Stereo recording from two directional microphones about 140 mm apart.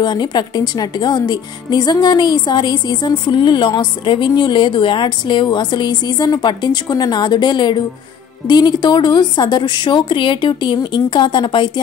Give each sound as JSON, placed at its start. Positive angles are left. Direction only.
{"t": 0.0, "sound": "speech", "side_deg": 30}